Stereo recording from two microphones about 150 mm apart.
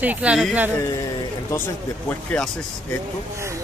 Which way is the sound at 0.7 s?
15° left (ahead or behind).